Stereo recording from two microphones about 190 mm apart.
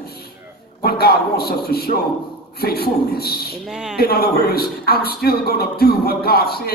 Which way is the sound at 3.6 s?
5° right (ahead or behind).